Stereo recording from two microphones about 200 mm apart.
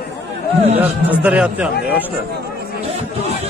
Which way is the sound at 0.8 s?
5° right (ahead or behind).